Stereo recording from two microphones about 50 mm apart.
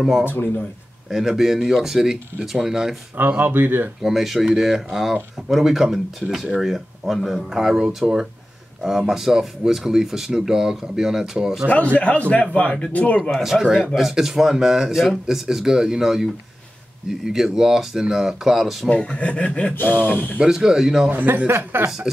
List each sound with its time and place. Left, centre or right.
0.2 s speech: left
1.1 s speech: centre
3.2 s speech: right
4.0 s speech: centre
7.4 s speech: centre
11.7 s a man's voice: left
13.4 s speech: centre
18.9 s a man's voice: left
19.7 s speech: left
20.3 s speech: centre
21.1 s speech: right
22.1 s speech: centre